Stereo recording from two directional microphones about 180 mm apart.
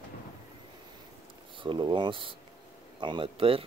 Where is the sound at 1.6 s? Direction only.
25° right (ahead or behind).